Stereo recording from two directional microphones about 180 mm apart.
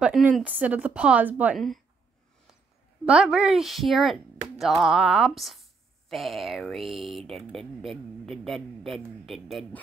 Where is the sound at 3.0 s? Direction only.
5° right (ahead or behind).